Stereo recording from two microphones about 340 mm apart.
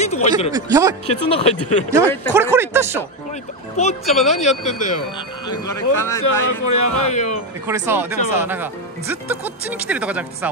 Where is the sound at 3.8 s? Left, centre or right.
Centre.